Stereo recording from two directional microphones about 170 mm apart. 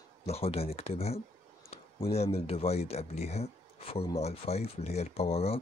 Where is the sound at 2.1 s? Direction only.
35° left (ahead or behind).